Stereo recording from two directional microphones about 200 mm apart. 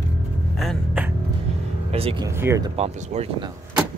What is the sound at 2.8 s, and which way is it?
Speech, 35° right (ahead or behind).